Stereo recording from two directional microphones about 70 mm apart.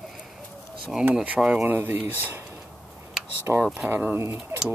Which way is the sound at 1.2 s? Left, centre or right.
Centre.